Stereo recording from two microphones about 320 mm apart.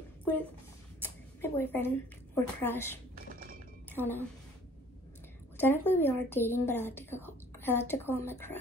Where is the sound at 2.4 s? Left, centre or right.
Centre.